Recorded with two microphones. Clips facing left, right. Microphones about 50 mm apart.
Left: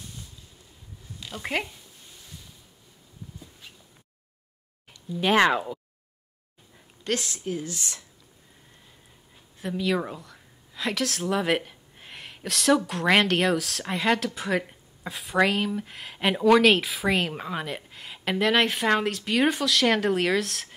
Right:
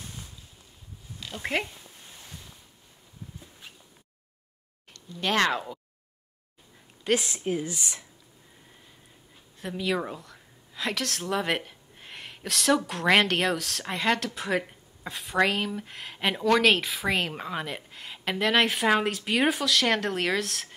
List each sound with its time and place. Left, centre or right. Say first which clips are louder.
1.2 s speech: even; centre
4.9 s speech: left 5 dB; centre
7.1 s speech: right 3 dB; centre
7.3 s speech: right 2 dB; right
9.6 s a woman's voice: left 2 dB; centre